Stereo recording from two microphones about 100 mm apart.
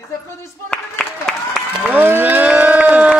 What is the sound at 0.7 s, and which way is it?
Speech, 10° left (ahead or behind).